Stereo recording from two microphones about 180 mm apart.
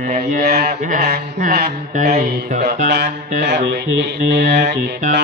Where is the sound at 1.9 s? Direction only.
40° right (ahead or behind).